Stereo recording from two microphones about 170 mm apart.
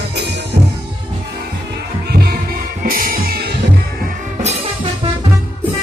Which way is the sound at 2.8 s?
55° right (ahead or behind).